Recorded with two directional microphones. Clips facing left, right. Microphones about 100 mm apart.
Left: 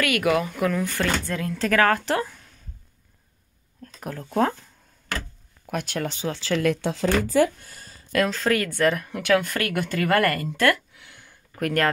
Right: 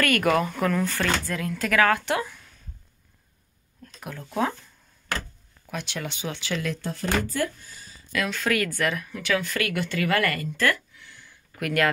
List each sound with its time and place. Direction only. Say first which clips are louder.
0.0 s speech: even; 10° left (ahead or behind)
0.8 s speech: left 1 dB; 20° left (ahead or behind)
3.8 s speech: left 4 dB; 40° left (ahead or behind)
5.7 s speech: left 5 dB; 50° left (ahead or behind)
6.5 s speech: left 8 dB; 65° left (ahead or behind)
8.3 s speech: left 2 dB; 30° left (ahead or behind)
8.8 s speech: left 5 dB; 45° left (ahead or behind)
9.1 s a woman's voice: left 5 dB; 55° left (ahead or behind)
11.5 s speech: left 1 dB; 40° left (ahead or behind)